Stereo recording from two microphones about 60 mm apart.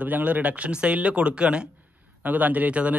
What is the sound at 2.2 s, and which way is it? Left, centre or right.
Speech, right.